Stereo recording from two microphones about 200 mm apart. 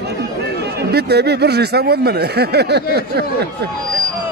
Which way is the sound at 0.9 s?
55° right (ahead or behind).